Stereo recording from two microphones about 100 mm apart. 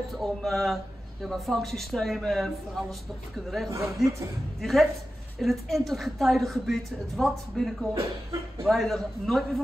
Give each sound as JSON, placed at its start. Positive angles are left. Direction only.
{"t": 0.1, "sound": "speech", "side_deg": 0}
{"t": 7.9, "sound": "speech", "side_deg": -30}
{"t": 8.6, "sound": "speech", "side_deg": 0}